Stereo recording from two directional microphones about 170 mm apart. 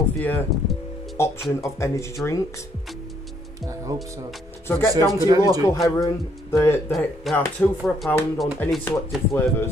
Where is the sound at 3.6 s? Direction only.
20° right (ahead or behind).